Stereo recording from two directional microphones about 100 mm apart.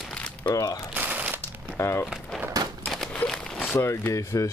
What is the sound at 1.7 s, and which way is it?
Speech, 25° left (ahead or behind).